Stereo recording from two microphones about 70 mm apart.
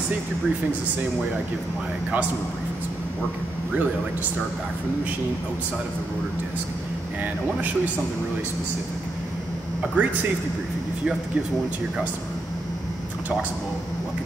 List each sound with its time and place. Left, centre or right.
10.0 s speech: right